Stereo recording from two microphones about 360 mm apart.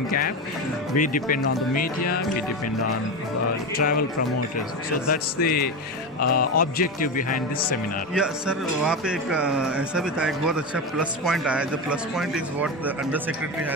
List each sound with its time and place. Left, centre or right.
0.9 s speech: left
3.7 s speech: left
5.1 s speech: left
6.1 s music: left
6.5 s speech: left
8.1 s speech: centre